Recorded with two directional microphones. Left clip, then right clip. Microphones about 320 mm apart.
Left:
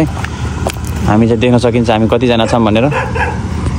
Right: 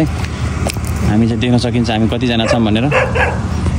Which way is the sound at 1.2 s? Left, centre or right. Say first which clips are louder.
Left 6 dB; centre.